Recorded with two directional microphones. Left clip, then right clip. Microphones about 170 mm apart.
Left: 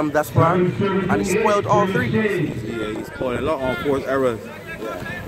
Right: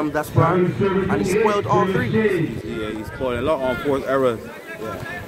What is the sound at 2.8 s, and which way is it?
Speech, 10° right (ahead or behind).